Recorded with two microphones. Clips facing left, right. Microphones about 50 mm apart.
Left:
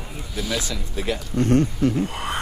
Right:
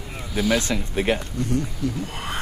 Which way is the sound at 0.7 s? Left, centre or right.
Right.